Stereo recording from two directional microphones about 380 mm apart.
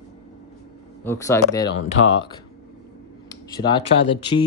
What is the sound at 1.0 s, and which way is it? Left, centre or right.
Speech, centre.